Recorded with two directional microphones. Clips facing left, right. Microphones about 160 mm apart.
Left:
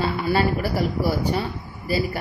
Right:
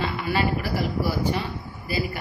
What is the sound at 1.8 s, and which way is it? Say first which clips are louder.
Speech: left 4 dB; 40° left (ahead or behind).